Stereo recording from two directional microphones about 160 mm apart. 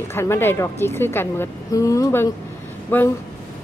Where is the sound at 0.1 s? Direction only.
15° left (ahead or behind).